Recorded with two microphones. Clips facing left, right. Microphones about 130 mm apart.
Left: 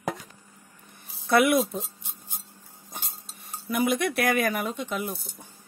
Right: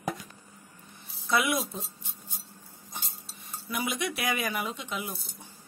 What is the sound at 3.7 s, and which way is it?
Speech, 55° left (ahead or behind).